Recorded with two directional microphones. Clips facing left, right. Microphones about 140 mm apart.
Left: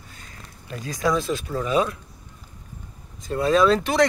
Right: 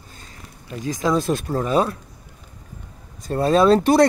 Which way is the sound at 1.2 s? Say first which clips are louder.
Right 4 dB; 50° right (ahead or behind).